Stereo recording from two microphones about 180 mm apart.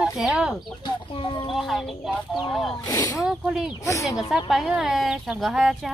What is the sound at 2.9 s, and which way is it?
Speech, 20° left (ahead or behind).